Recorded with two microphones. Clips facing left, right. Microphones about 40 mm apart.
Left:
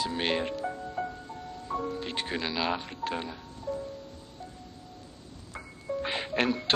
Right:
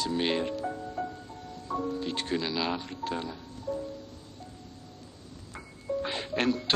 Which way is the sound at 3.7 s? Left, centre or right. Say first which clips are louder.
Right 1 dB; left.